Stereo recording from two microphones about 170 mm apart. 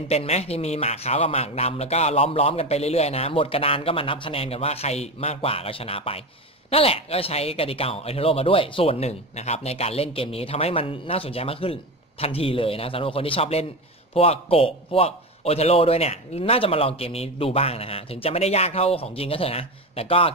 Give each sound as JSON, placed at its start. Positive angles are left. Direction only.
{"t": 0.1, "sound": "speech", "side_deg": 40}